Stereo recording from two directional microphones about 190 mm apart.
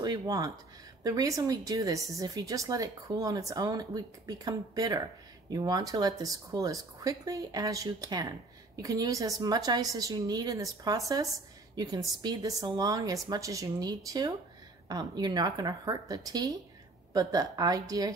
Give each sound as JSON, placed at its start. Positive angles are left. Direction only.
{"t": 0.0, "sound": "a woman's voice", "side_deg": -20}